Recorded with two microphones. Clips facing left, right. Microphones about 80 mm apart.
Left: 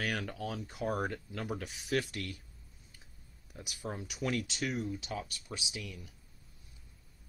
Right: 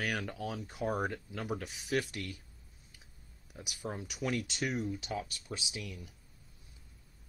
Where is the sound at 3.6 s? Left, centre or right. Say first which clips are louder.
Right 1 dB; centre.